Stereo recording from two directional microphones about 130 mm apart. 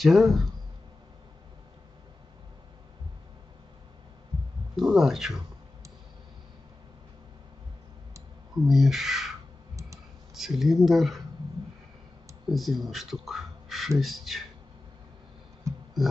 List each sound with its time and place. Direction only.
0.0 s a man's voice: centre (ahead or behind)
4.7 s a man's voice: centre (ahead or behind)
8.6 s a man's voice: 5° right (ahead or behind)
10.3 s a man's voice: centre (ahead or behind)
12.4 s a man's voice: centre (ahead or behind)
15.7 s tick: 25° right (ahead or behind)